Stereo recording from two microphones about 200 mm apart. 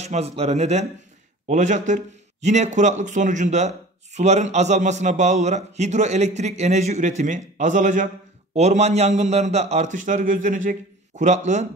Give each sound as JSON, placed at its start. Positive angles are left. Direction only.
{"t": 0.0, "sound": "speech", "side_deg": -30}